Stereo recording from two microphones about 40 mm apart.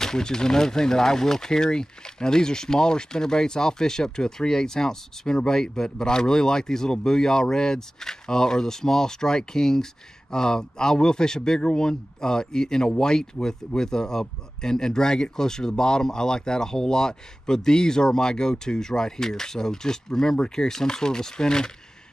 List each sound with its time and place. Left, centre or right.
0.0 s a man's voice: centre